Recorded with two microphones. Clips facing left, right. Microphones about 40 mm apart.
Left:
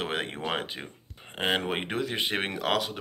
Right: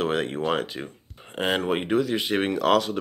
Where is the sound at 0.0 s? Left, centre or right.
Left.